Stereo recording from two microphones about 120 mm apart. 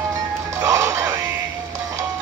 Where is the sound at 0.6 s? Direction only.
25° right (ahead or behind).